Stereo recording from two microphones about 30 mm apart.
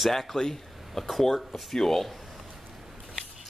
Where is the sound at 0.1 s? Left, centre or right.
Centre.